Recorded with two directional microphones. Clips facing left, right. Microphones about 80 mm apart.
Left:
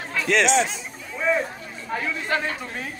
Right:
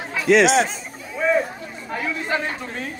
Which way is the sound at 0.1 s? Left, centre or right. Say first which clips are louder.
Right 6 dB; centre.